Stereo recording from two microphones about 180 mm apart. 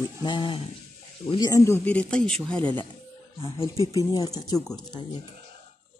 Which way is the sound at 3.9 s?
20° left (ahead or behind).